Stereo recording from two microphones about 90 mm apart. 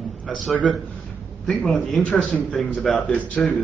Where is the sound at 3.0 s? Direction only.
15° left (ahead or behind).